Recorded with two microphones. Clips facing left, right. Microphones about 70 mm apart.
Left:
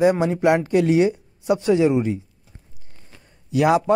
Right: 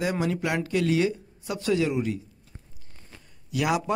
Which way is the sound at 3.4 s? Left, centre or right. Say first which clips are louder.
Left 8 dB; left.